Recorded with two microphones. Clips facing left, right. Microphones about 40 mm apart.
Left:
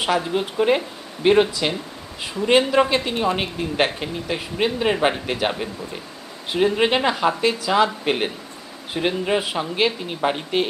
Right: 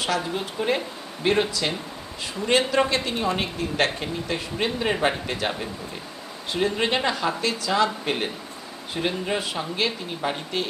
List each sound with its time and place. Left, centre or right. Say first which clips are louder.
0.0 s speech: left 5 dB; centre